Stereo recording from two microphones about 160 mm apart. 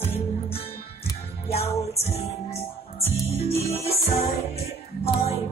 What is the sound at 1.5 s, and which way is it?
Music, 40° left (ahead or behind).